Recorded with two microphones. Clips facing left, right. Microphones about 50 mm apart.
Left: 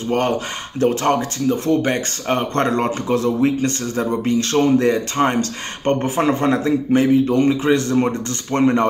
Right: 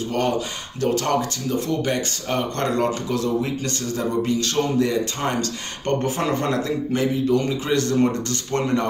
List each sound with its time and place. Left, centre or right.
0.7 s speech: left